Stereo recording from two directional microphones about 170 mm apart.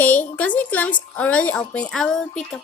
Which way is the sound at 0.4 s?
10° left (ahead or behind).